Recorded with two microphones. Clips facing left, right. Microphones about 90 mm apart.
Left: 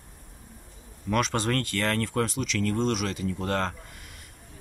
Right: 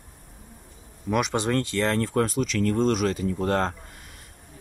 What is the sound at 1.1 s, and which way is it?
Speech, 15° right (ahead or behind).